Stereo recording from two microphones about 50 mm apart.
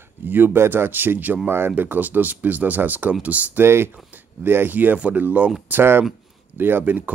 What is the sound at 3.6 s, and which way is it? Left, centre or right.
Speech, right.